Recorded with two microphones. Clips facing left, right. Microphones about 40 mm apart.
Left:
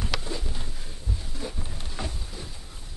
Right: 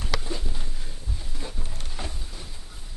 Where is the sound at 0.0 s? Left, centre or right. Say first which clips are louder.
Even; centre.